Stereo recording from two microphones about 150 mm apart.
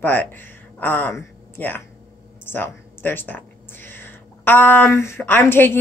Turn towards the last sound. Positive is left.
turn(degrees=15)  # may be behind; listen again after turning